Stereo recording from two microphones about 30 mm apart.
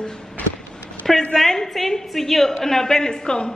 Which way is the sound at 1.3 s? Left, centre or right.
Centre.